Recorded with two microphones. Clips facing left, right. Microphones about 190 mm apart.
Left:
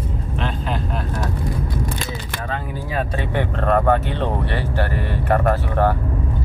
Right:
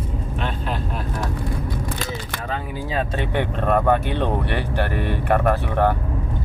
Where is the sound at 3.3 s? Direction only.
15° right (ahead or behind).